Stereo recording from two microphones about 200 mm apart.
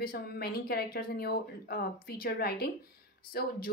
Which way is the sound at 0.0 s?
50° left (ahead or behind).